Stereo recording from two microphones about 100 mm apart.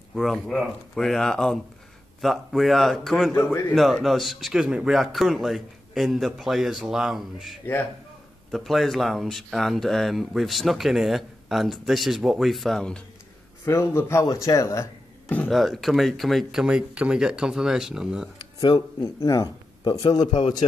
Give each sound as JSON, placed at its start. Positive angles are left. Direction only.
{"t": 0.1, "sound": "speech", "side_deg": 0}
{"t": 13.7, "sound": "speech", "side_deg": 25}
{"t": 15.2, "sound": "music", "side_deg": 15}
{"t": 15.5, "sound": "speech", "side_deg": 0}
{"t": 19.2, "sound": "a man's voice", "side_deg": 35}